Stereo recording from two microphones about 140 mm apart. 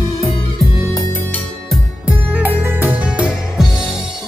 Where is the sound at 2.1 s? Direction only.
10° right (ahead or behind).